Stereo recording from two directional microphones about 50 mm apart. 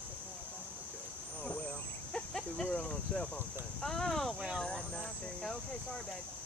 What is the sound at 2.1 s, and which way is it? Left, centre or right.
Cricket, centre.